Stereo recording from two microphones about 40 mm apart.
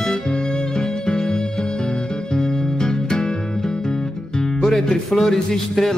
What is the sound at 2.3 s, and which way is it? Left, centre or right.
Music, centre.